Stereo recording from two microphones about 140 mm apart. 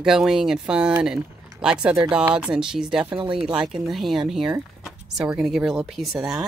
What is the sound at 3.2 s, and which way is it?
Speech, 35° right (ahead or behind).